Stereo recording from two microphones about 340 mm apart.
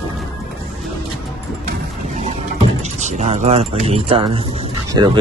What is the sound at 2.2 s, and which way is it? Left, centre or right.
Keys jangling, centre.